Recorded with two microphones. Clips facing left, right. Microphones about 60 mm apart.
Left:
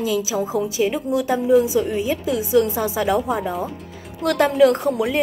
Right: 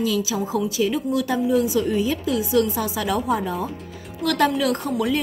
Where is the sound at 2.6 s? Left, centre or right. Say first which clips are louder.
Left 2 dB; left.